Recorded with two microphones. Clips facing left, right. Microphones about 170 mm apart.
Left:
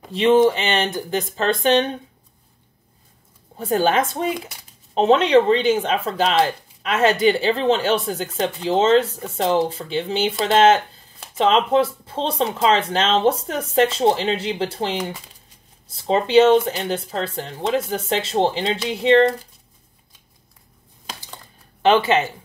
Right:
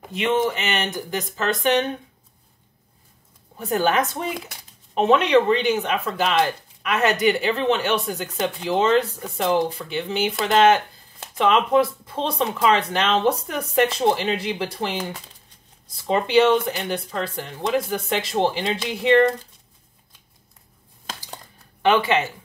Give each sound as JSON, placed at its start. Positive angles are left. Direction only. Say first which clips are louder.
{"t": 0.1, "sound": "speech", "louder": "left 7 dB", "side_deg": 35}
{"t": 3.5, "sound": "speech", "louder": "left 2 dB", "side_deg": 30}
{"t": 21.8, "sound": "speech", "louder": "left 3 dB", "side_deg": 25}